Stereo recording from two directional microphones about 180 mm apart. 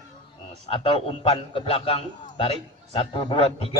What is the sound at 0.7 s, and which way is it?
A man's voice, 30° left (ahead or behind).